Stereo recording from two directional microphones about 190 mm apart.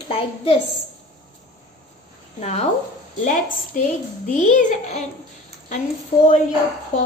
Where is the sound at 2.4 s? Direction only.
35° left (ahead or behind).